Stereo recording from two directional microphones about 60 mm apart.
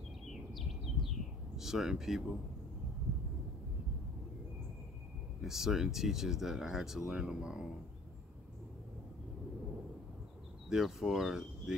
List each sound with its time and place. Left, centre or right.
0.3 s bird: centre
1.6 s speech: centre
5.4 s speech: centre
10.7 s speech: centre